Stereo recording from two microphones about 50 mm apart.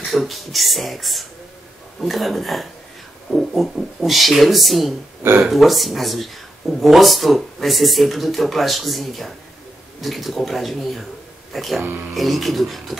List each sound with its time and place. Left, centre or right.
0.0 s speech: centre
11.8 s speech: right
12.1 s speech: centre